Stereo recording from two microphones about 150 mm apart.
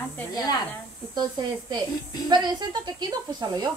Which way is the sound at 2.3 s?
30° right (ahead or behind).